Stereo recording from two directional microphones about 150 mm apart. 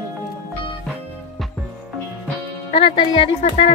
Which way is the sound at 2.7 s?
35° left (ahead or behind).